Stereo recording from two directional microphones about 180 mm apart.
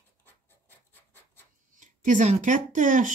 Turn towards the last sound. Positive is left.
turn(degrees=-45)  # may be behind; listen again after turning